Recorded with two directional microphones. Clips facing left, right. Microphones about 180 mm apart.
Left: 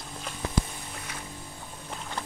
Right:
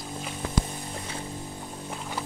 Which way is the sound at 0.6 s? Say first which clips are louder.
Right 5 dB; 30° right (ahead or behind).